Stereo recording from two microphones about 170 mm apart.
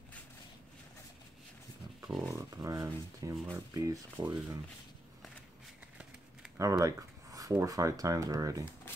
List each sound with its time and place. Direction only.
2.0 s speech: 5° right (ahead or behind)
2.3 s speech: 20° right (ahead or behind)
6.6 s speech: 20° right (ahead or behind)